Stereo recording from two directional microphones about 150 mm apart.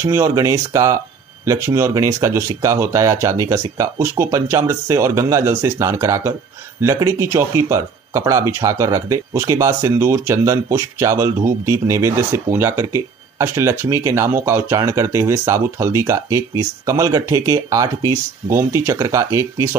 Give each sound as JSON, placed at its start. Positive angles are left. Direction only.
{"t": 0.0, "sound": "speech", "side_deg": -20}